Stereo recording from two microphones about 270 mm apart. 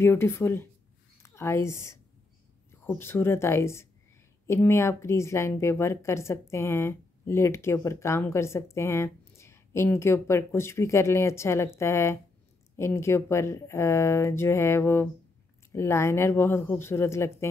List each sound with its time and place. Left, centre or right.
0.0 s speech: centre